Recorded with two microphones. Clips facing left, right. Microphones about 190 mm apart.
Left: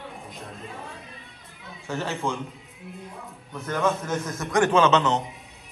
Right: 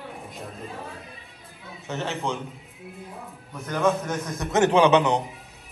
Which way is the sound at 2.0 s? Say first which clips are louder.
Even; 15° right (ahead or behind).